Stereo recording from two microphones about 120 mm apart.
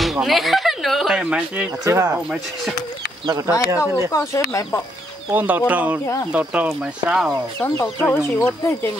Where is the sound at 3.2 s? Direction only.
35° right (ahead or behind).